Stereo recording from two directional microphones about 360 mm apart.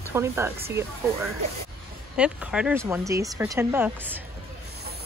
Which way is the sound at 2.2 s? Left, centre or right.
Centre.